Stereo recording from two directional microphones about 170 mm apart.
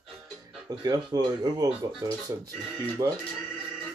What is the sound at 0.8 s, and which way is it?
Speech, 25° right (ahead or behind).